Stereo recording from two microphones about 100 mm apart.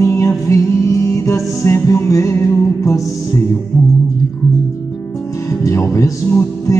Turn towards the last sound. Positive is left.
turn(degrees=25)  # may be behind; listen again after turning